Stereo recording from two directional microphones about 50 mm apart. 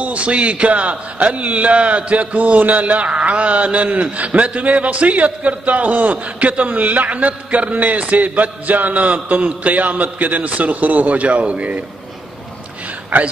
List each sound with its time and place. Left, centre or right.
0.0 s a man's voice: right